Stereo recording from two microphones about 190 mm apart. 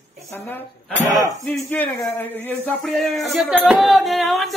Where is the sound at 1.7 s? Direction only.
10° left (ahead or behind).